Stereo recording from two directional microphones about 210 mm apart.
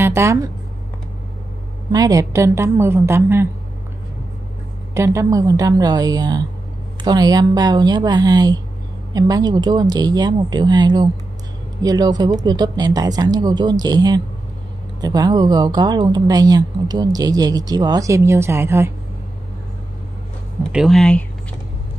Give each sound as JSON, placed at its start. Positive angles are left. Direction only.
{"t": 0.0, "sound": "speech", "side_deg": -15}
{"t": 1.9, "sound": "a woman's voice", "side_deg": -15}
{"t": 4.9, "sound": "a woman's voice", "side_deg": -15}
{"t": 20.7, "sound": "speech", "side_deg": 0}